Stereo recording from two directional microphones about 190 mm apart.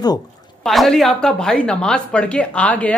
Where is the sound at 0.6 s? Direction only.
Centre (ahead or behind).